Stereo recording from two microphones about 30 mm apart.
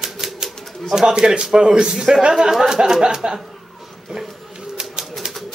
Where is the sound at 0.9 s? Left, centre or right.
Right.